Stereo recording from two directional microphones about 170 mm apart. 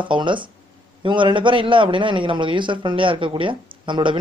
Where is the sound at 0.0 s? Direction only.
30° right (ahead or behind).